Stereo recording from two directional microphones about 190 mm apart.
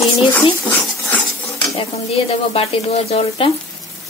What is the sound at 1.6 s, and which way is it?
Stir, 30° left (ahead or behind).